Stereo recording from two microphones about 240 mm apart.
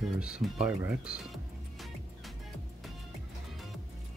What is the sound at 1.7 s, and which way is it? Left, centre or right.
Music, centre.